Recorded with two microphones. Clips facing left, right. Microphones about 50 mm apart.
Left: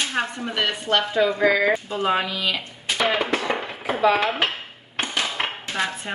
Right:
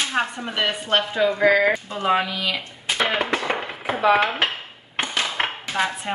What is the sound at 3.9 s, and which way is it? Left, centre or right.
Dishes, right.